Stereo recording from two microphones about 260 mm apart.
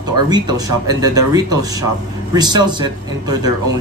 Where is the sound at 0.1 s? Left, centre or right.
Centre.